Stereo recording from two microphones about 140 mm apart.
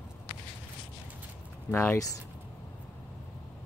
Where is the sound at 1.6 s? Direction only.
15° left (ahead or behind).